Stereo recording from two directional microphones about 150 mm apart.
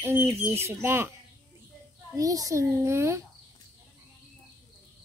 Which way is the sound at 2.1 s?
25° right (ahead or behind).